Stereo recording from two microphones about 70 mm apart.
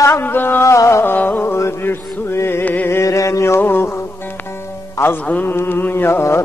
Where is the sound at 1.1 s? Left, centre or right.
Left.